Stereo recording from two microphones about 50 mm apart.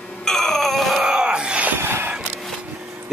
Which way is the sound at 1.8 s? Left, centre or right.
Right.